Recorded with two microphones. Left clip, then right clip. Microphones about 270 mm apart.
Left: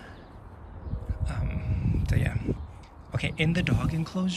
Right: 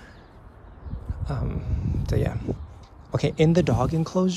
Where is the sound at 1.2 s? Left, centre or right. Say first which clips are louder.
Right 6 dB; centre.